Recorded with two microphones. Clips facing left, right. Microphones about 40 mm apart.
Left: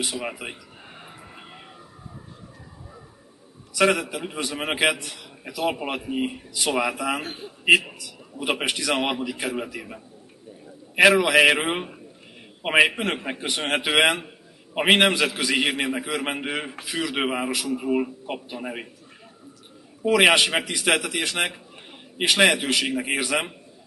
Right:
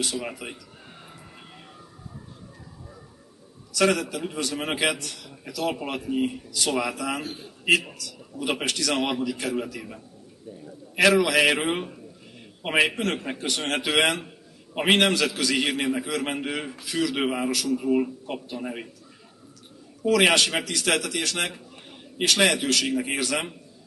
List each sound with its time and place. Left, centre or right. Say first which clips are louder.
0.0 s a man's voice: left 1 dB; centre
3.7 s a man's voice: left 2 dB; centre
20.0 s a man's voice: left 2 dB; centre